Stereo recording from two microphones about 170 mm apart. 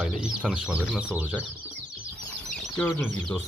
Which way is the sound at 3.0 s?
Centre (ahead or behind).